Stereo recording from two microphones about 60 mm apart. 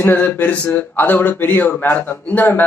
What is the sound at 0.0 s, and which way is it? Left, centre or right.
Speech, left.